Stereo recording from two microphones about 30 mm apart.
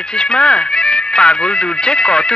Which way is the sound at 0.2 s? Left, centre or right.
Left.